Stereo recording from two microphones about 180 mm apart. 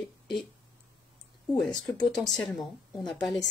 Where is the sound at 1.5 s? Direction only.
5° left (ahead or behind).